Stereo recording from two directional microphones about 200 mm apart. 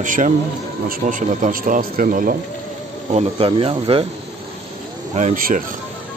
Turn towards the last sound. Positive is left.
turn(degrees=-45)  # may be behind; listen again after turning